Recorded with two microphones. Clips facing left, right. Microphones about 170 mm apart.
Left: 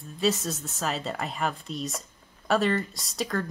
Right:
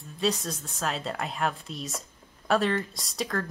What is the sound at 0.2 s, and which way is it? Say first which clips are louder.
A woman's voice: left 2 dB; centre (ahead or behind).